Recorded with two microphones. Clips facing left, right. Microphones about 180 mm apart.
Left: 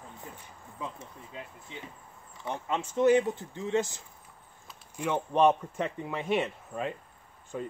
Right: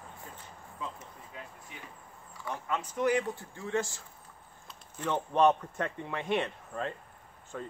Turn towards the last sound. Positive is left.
turn(degrees=15)  # may be behind; listen again after turning